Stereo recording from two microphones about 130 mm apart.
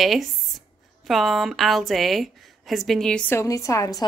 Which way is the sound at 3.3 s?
25° left (ahead or behind).